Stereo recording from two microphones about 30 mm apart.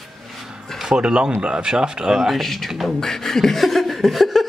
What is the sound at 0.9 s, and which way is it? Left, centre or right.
Speech, right.